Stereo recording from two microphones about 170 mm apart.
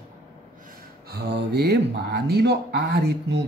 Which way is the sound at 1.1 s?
70° right (ahead or behind).